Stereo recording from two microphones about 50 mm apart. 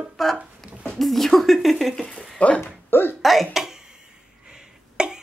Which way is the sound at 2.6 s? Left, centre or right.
Left.